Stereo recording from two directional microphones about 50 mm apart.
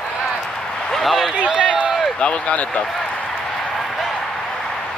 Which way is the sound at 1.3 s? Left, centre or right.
Right.